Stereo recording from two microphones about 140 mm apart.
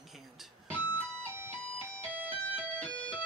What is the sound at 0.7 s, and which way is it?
Music, 10° left (ahead or behind).